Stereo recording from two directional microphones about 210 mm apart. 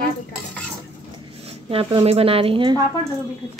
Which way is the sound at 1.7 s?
25° right (ahead or behind).